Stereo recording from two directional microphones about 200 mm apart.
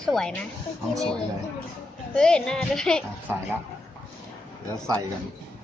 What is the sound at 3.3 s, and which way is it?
Speech, 10° right (ahead or behind).